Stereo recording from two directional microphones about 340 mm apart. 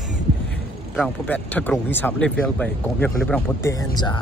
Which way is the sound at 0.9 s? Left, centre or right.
Centre.